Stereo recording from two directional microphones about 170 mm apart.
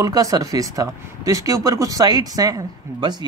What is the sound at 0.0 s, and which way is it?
Speech, 20° right (ahead or behind).